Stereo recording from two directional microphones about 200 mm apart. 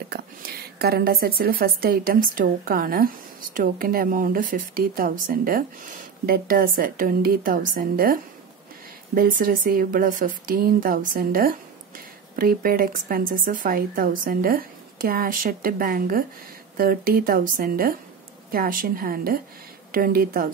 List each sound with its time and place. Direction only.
0.1 s a woman's voice: 50° right (ahead or behind)